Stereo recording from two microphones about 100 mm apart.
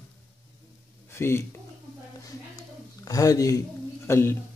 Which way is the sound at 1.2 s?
25° left (ahead or behind).